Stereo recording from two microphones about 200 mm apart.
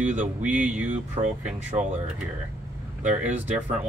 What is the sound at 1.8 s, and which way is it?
Speech, 35° right (ahead or behind).